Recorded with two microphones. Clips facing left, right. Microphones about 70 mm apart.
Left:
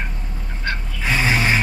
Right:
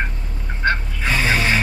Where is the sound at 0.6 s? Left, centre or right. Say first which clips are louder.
Right 7 dB; right.